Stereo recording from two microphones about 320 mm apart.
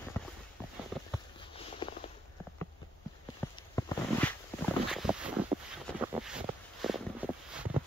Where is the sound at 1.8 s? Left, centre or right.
Centre.